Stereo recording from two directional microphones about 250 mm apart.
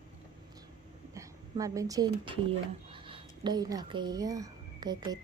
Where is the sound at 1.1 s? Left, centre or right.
Centre.